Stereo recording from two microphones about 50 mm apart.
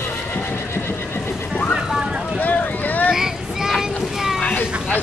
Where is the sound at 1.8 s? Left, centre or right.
Centre.